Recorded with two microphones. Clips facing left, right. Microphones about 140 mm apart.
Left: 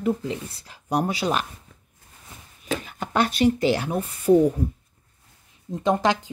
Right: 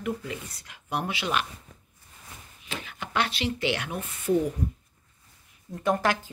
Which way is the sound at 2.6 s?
40° left (ahead or behind).